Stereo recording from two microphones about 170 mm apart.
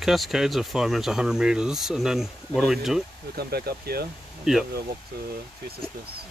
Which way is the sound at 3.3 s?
65° right (ahead or behind).